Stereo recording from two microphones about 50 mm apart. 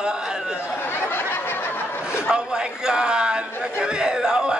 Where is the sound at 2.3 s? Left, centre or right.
Centre.